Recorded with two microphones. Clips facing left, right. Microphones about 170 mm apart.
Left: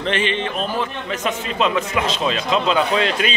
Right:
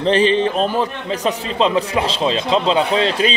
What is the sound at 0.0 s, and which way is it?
Speech, 35° right (ahead or behind).